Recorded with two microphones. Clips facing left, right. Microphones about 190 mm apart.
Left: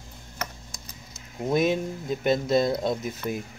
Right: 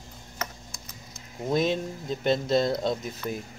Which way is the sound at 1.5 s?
10° left (ahead or behind).